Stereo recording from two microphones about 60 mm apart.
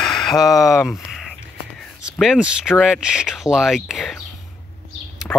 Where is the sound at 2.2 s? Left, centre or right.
Centre.